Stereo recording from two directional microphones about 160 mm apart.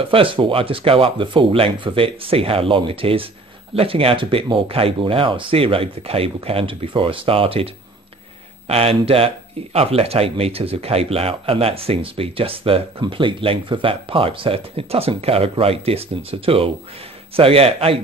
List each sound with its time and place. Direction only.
0.0 s speech: 35° right (ahead or behind)